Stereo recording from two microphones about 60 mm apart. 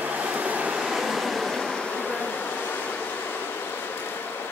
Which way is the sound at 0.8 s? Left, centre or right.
Centre.